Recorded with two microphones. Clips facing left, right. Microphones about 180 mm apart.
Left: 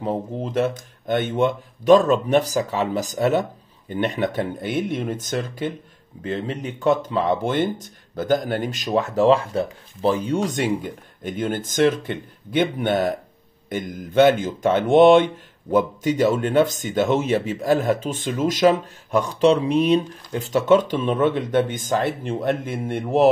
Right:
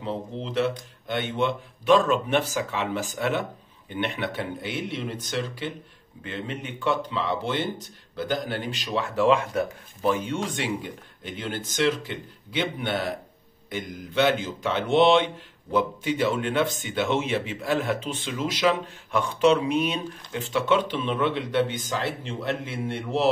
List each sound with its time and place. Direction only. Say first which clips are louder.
0.0 s speech: left 6 dB; 45° left (ahead or behind)